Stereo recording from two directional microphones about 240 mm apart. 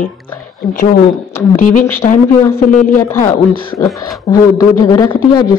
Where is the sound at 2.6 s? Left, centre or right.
Left.